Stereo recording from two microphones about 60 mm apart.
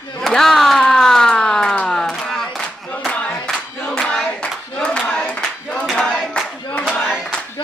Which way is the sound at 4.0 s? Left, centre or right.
Centre.